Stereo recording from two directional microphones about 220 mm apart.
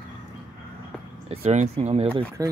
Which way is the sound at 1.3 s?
30° right (ahead or behind).